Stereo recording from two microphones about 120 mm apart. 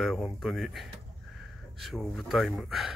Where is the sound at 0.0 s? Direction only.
Centre (ahead or behind).